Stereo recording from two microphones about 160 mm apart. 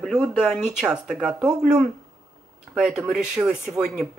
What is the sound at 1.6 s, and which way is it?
Speech, 45° right (ahead or behind).